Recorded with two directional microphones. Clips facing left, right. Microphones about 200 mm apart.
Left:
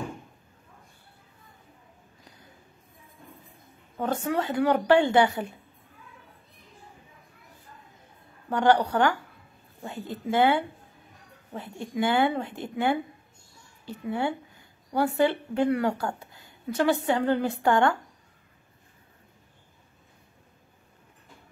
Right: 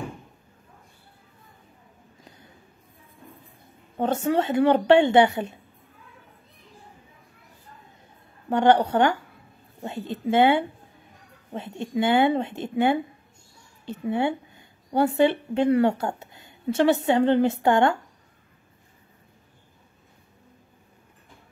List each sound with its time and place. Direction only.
3.9 s speech: 25° right (ahead or behind)
8.5 s a woman's voice: 25° right (ahead or behind)